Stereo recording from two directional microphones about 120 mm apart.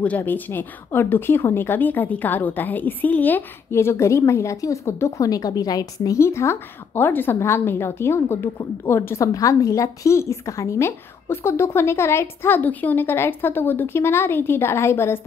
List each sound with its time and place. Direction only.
0.0 s a woman's voice: 15° left (ahead or behind)